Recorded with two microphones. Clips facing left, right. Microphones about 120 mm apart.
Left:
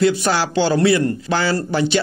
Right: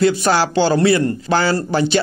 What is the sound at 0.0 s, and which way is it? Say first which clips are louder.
A man's voice: right 2 dB; 45° right (ahead or behind).